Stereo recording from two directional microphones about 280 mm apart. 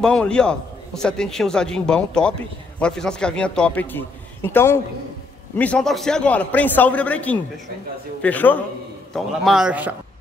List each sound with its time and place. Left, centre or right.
0.0 s a man's voice: centre